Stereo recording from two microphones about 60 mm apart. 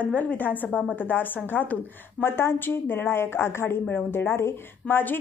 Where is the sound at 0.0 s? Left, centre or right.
Left.